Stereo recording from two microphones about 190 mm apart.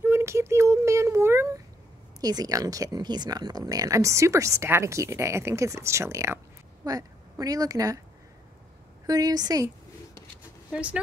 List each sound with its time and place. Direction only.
0.0 s a sound: 15° right (ahead or behind)
2.1 s speech: 20° right (ahead or behind)
9.0 s a woman's voice: 20° right (ahead or behind)
10.7 s speech: 5° right (ahead or behind)